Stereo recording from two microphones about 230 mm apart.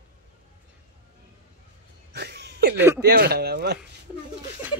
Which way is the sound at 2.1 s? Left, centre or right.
Right.